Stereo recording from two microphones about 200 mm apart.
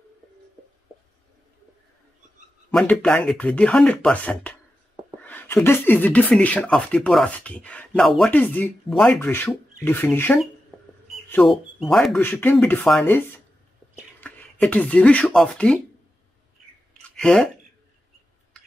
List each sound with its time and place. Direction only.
2.7 s speech: 5° left (ahead or behind)
10.7 s a sound: centre (ahead or behind)
11.2 s speech: 10° left (ahead or behind)
14.2 s speech: 5° left (ahead or behind)
17.1 s speech: 5° left (ahead or behind)